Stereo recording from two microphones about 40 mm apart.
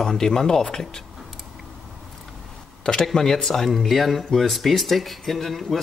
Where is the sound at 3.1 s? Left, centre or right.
Centre.